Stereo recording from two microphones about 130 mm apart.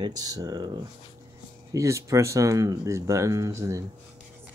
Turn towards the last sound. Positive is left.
turn(degrees=-25)  # may be behind; listen again after turning